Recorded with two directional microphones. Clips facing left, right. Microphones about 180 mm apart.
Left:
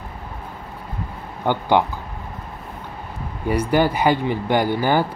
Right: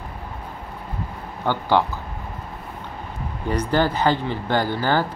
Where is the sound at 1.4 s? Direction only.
15° left (ahead or behind).